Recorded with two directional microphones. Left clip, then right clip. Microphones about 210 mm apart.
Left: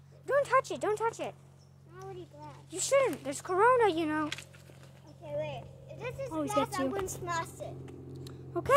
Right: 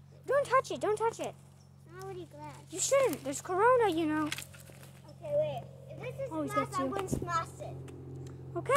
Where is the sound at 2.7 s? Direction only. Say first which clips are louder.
Left 1 dB; 15° left (ahead or behind).